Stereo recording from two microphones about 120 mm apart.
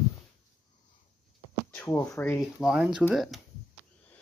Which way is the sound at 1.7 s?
15° left (ahead or behind).